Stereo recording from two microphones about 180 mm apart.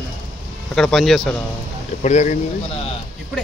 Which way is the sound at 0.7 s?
Centre (ahead or behind).